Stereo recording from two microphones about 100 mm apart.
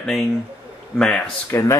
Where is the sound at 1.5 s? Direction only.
30° left (ahead or behind).